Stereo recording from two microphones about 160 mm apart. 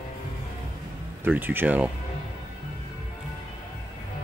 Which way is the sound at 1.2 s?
10° right (ahead or behind).